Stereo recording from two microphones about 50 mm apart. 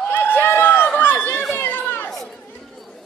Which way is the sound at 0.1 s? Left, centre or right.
Left.